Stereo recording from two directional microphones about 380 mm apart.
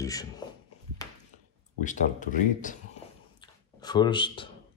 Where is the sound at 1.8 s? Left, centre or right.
Centre.